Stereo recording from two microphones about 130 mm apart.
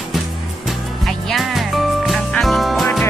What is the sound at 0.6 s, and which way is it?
Music, centre (ahead or behind).